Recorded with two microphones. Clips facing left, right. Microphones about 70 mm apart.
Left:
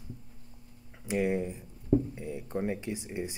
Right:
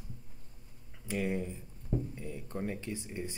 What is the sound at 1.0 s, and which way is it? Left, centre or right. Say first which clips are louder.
Speech: left 5 dB; centre.